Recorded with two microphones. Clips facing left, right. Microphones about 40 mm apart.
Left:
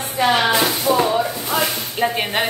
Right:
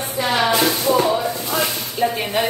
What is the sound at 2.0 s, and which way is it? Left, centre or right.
Speech, left.